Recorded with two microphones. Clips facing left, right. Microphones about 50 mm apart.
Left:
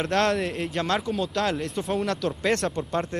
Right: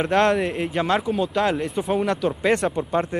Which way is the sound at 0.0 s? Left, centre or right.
Centre.